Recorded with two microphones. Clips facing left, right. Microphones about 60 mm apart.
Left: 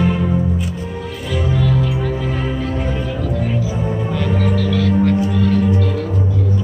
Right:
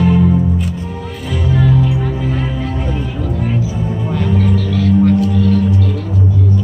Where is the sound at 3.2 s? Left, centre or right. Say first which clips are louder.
Right 1 dB; centre.